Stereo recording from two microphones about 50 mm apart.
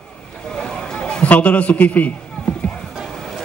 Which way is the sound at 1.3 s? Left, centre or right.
Left.